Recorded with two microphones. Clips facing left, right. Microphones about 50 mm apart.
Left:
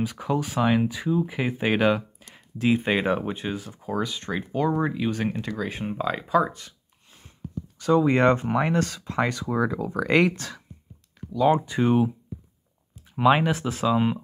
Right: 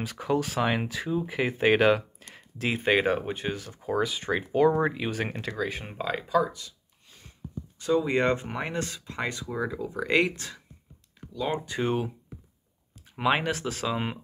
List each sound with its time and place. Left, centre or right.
0.0 s speech: centre
5.6 s speech: centre
5.9 s speech: centre
6.4 s speech: left
7.1 s a sound: left
7.8 s speech: left
11.1 s a sound: left
11.5 s speech: left
11.8 s speech: centre
13.1 s speech: centre
13.4 s speech: left
13.8 s speech: centre